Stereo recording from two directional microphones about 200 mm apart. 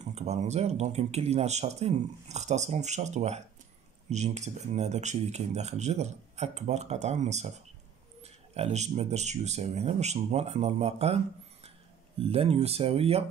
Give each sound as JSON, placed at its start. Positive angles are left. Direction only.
{"t": 0.0, "sound": "speech", "side_deg": -35}
{"t": 12.2, "sound": "speech", "side_deg": -30}